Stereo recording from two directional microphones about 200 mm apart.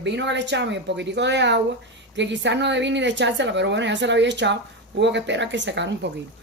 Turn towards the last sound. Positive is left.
turn(degrees=-60)  # may be behind; listen again after turning